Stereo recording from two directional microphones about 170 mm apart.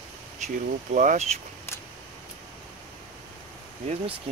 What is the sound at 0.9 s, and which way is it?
Speech, 45° right (ahead or behind).